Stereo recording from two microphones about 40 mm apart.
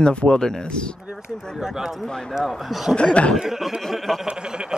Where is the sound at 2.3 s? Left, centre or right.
Centre.